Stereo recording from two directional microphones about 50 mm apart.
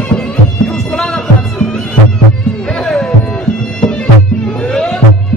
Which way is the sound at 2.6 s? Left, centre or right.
Centre.